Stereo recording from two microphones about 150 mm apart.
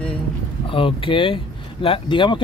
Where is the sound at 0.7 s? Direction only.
35° left (ahead or behind).